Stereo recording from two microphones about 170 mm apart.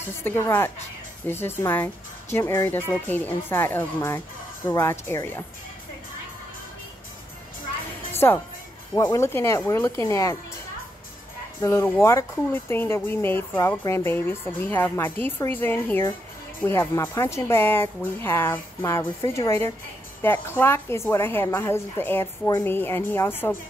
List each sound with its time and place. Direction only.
0.0 s speech: 15° left (ahead or behind)
8.1 s music: 15° left (ahead or behind)
8.9 s speech: 15° left (ahead or behind)
11.6 s speech: 15° left (ahead or behind)